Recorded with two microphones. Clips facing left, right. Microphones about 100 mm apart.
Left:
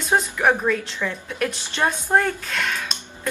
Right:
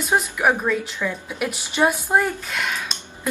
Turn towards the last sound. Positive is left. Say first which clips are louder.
# even
turn(degrees=-5)  # may be behind; listen again after turning